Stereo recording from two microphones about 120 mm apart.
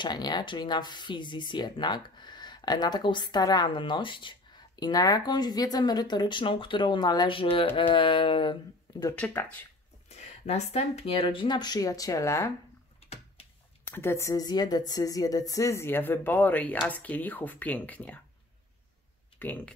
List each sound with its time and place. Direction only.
0.0 s speech: 35° left (ahead or behind)
9.1 s speech: 15° left (ahead or behind)
10.0 s speech: 70° left (ahead or behind); by 12.5 s 25° left (ahead or behind)
13.8 s a woman's voice: 20° left (ahead or behind)
19.3 s speech: 15° left (ahead or behind)